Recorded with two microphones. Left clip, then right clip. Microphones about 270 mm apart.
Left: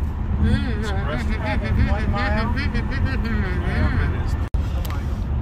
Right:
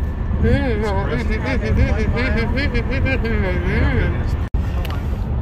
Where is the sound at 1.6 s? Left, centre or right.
Centre.